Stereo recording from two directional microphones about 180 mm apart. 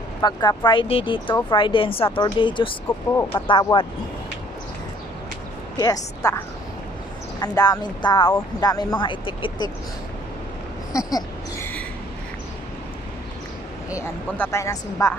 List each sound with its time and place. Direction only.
0.2 s speech: 25° left (ahead or behind)
5.8 s speech: 20° left (ahead or behind)
10.9 s a sound: 20° left (ahead or behind)
13.9 s speech: 15° left (ahead or behind)